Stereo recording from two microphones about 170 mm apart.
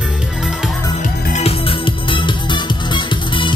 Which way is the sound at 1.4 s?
35° left (ahead or behind).